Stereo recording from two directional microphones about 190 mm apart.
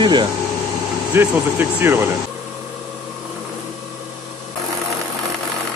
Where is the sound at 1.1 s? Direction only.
10° right (ahead or behind).